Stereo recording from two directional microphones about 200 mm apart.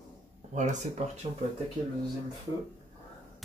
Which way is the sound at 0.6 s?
35° right (ahead or behind).